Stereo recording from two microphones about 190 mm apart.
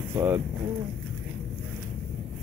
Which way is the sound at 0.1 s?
10° right (ahead or behind).